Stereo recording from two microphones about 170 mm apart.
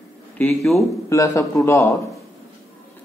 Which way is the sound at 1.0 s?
20° left (ahead or behind).